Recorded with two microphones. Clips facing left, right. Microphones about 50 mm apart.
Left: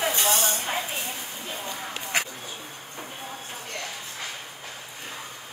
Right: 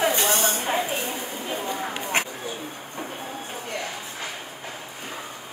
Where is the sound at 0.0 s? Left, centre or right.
Centre.